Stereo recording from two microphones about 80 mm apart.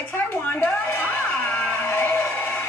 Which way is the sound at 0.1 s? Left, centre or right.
Left.